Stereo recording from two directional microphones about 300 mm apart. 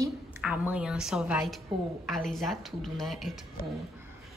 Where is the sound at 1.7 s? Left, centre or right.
Centre.